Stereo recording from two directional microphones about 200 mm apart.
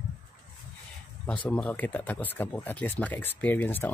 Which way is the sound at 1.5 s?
5° left (ahead or behind).